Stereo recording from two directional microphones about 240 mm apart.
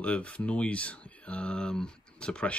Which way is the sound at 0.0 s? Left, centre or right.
Centre.